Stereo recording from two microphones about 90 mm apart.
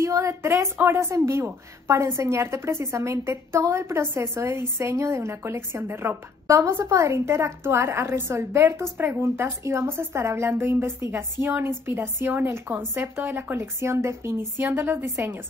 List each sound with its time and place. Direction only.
0.0 s a woman's voice: 35° right (ahead or behind)